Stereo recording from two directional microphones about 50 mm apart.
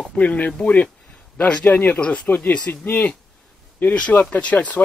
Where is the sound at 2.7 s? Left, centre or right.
Left.